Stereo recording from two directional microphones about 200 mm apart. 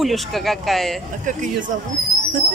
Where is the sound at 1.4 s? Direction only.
40° right (ahead or behind).